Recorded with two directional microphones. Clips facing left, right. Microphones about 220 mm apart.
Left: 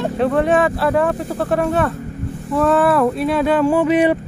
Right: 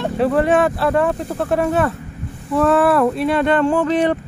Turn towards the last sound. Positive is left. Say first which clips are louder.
# left 2 dB
turn(degrees=10)  # may be behind; listen again after turning